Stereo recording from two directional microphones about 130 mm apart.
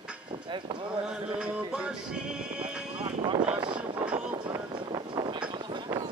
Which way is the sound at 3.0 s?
35° right (ahead or behind).